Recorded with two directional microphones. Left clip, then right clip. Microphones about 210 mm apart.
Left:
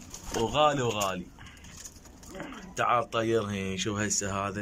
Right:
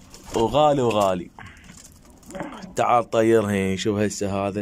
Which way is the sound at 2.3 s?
25° right (ahead or behind).